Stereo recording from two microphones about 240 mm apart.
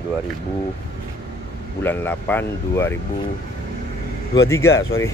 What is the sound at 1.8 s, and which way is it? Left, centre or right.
Speech, centre.